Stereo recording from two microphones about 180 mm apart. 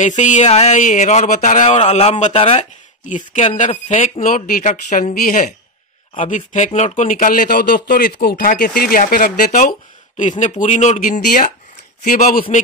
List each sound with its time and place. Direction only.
0.0 s speech: 40° left (ahead or behind)
3.0 s speech: 45° left (ahead or behind)